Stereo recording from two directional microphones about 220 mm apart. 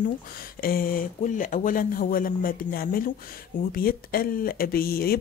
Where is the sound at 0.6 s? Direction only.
40° left (ahead or behind).